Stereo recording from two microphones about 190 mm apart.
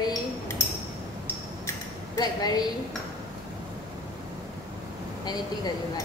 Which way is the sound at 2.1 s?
20° left (ahead or behind).